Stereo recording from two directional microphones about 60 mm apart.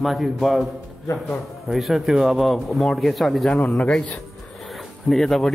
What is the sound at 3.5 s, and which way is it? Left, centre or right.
Speech, left.